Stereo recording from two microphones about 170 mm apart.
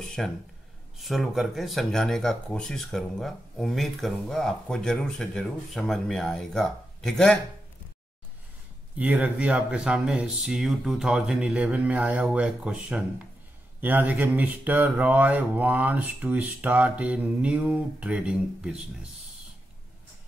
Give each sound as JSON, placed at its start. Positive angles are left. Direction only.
{"t": 0.0, "sound": "a sound", "side_deg": 5}
{"t": 0.9, "sound": "speech", "side_deg": 0}
{"t": 8.9, "sound": "speech", "side_deg": -10}